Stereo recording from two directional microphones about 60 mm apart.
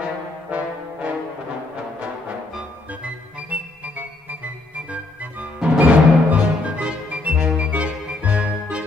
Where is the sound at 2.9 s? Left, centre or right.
Right.